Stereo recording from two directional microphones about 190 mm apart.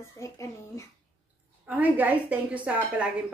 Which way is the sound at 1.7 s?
10° right (ahead or behind).